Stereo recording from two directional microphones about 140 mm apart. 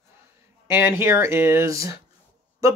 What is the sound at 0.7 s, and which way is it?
Speech, 15° right (ahead or behind).